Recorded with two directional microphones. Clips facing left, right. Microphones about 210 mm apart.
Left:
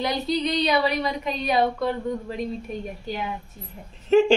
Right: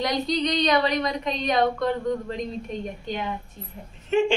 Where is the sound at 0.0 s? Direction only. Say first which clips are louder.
Even; 5° left (ahead or behind).